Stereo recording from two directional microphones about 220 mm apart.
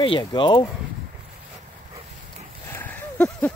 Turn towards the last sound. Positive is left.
turn(degrees=5)  # may be behind; listen again after turning